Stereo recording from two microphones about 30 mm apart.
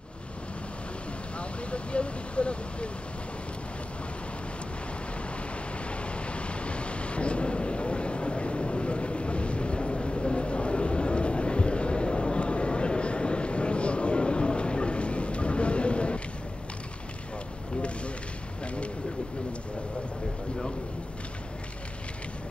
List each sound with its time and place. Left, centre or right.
1.4 s vehicle: left
5.9 s vehicle: left